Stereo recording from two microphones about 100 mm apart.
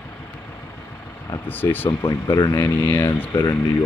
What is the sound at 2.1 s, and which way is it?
Speech, 35° left (ahead or behind).